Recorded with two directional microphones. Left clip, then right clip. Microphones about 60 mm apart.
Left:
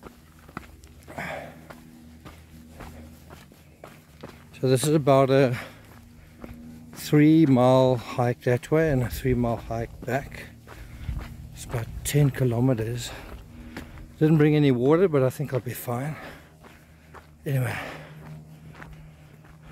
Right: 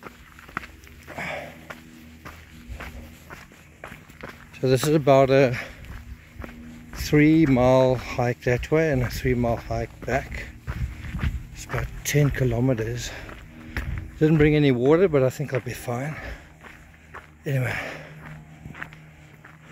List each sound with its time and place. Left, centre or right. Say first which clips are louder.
1.1 s sniff: right 2 dB; left
4.6 s speech: right 2 dB; centre
5.5 s speech: right 3 dB; centre
7.0 s speech: right 1 dB; left
8.2 s speech: right 1 dB; left
8.9 s speech: right 2 dB; centre
11.8 s a sound: right 2 dB; centre
12.4 s speech: right 1 dB; left
13.8 s a sound: right 7 dB; right
14.2 s speech: right 2 dB; centre
14.5 s speech: right 2 dB; centre
17.4 s a sound: right 3 dB; centre